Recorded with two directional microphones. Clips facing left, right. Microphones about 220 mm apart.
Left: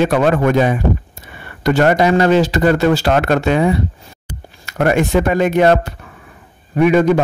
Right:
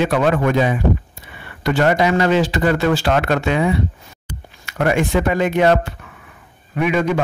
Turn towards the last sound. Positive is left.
turn(degrees=40)  # may be behind; listen again after turning